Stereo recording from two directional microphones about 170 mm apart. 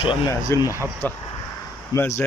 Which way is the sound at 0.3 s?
20° left (ahead or behind).